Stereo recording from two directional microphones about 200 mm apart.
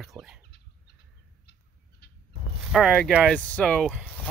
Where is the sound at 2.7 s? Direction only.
Centre (ahead or behind).